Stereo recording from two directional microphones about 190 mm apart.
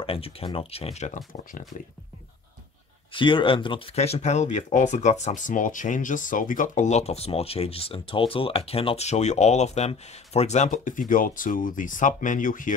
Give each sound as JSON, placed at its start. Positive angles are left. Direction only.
{"t": 0.0, "sound": "speech", "side_deg": 30}
{"t": 3.1, "sound": "speech", "side_deg": 25}